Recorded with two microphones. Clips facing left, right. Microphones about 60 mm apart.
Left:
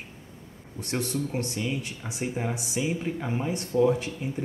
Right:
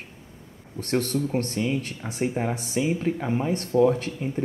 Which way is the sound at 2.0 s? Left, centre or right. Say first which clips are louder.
Right 3 dB; centre.